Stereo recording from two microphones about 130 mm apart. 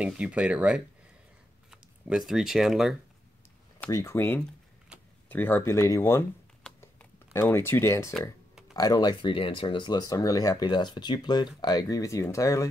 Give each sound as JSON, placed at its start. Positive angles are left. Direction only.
{"t": 0.0, "sound": "speech", "side_deg": -10}
{"t": 3.9, "sound": "speech", "side_deg": 25}
{"t": 6.8, "sound": "computer keyboard", "side_deg": 20}
{"t": 8.7, "sound": "speech", "side_deg": 30}